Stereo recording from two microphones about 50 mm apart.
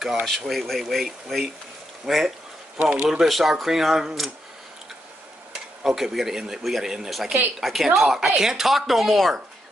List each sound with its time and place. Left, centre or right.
0.0 s speech: centre
2.8 s speech: centre
3.1 s speech: centre
5.9 s speech: centre